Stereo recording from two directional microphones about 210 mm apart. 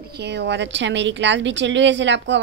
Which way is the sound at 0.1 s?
55° right (ahead or behind).